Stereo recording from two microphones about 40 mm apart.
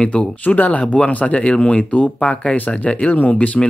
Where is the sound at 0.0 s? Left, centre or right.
Left.